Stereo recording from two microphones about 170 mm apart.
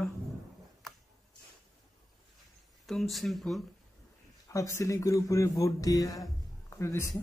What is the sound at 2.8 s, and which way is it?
Speech, centre (ahead or behind).